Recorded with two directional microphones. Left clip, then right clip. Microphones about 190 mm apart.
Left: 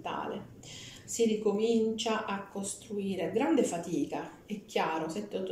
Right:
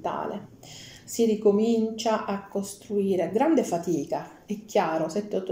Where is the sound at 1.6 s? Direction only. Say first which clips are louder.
Right 4 dB; 35° right (ahead or behind).